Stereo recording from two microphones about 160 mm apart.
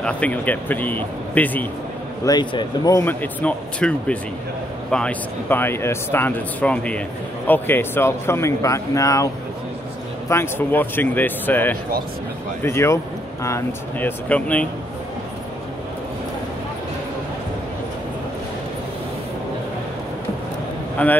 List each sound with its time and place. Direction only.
0.0 s speech: 10° left (ahead or behind)
2.2 s speech: 25° left (ahead or behind)
3.1 s speech: 10° left (ahead or behind)
10.3 s speech: 15° left (ahead or behind)
21.0 s speech: 10° left (ahead or behind)